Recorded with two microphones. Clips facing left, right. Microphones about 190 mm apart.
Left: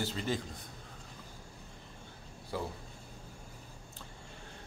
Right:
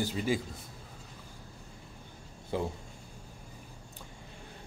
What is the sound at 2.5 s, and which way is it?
Speech, 20° right (ahead or behind).